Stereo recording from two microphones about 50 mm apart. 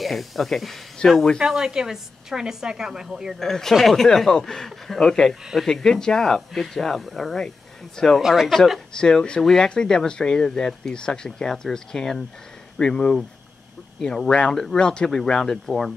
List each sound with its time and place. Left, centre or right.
0.0 s speech: centre
1.0 s speech: centre
1.4 s a woman's voice: centre
3.3 s speech: centre
5.3 s speech: centre
5.7 s speech: centre
8.2 s speech: centre
8.9 s speech: centre
9.4 s speech: centre